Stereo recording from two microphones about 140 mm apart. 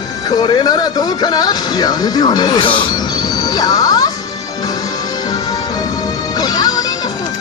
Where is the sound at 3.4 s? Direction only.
25° left (ahead or behind).